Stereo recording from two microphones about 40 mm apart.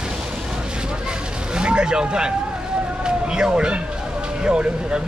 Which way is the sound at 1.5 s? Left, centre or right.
Right.